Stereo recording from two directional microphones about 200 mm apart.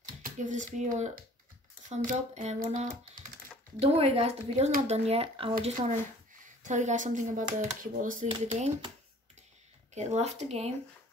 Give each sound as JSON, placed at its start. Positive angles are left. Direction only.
{"t": 0.0, "sound": "speech", "side_deg": -40}
{"t": 6.6, "sound": "speech", "side_deg": -35}
{"t": 8.3, "sound": "speech", "side_deg": -30}
{"t": 9.9, "sound": "speech", "side_deg": -35}